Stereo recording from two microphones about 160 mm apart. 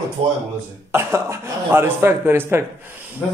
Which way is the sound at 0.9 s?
15° right (ahead or behind).